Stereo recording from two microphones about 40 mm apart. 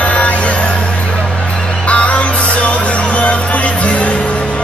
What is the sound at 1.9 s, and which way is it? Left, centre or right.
Music, left.